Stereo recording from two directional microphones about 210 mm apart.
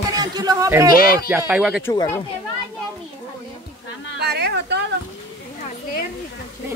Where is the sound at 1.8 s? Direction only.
15° left (ahead or behind).